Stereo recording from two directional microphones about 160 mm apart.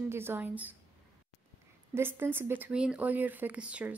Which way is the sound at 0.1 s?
15° right (ahead or behind).